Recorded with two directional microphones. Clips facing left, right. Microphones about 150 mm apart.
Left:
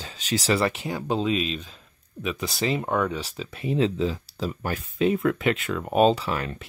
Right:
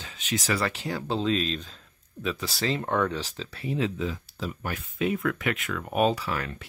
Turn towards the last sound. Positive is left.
turn(degrees=25)  # may be behind; listen again after turning